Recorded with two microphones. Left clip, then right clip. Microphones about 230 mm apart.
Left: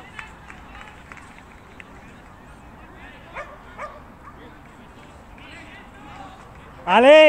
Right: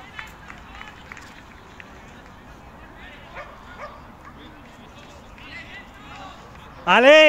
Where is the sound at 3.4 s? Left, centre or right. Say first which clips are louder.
Left 3 dB; left.